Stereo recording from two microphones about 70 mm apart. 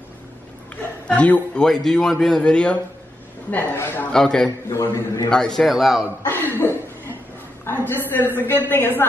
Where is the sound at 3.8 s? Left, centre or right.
Left.